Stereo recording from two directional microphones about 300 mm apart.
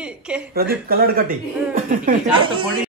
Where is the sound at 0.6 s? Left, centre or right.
Right.